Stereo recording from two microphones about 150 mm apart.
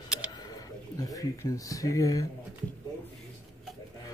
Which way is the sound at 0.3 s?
25° left (ahead or behind).